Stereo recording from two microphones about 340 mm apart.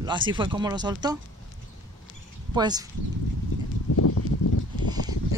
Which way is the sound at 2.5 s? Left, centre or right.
Centre.